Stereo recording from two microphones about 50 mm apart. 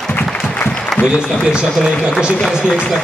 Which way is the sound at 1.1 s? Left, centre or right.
Centre.